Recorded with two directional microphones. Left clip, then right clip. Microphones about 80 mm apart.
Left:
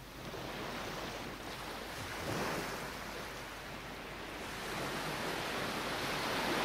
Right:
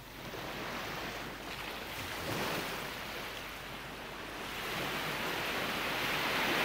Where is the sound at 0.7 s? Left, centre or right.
Right.